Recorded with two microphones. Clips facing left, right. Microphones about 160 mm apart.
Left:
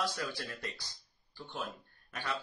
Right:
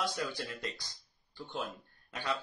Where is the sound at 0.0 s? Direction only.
20° right (ahead or behind).